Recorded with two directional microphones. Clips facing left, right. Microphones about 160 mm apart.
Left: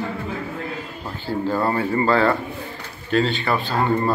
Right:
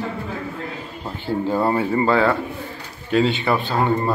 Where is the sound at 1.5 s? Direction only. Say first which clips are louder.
Right 1 dB; 15° right (ahead or behind).